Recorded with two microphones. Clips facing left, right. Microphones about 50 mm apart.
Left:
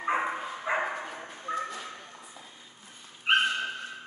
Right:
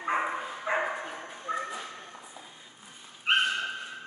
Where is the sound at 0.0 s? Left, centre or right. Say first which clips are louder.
Even; centre.